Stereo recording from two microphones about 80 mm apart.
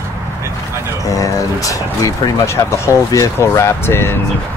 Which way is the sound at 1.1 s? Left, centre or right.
Left.